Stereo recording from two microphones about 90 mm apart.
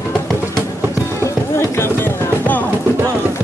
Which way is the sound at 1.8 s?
25° left (ahead or behind).